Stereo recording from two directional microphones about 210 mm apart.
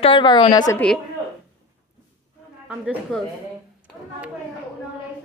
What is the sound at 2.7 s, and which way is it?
Speech, 5° right (ahead or behind).